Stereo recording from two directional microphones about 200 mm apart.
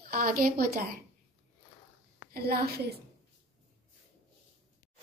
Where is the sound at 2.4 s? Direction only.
50° right (ahead or behind).